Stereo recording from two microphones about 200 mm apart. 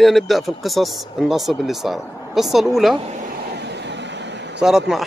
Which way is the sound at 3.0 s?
35° right (ahead or behind).